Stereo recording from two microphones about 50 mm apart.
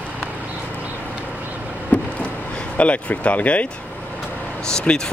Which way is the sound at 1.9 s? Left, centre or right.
Left.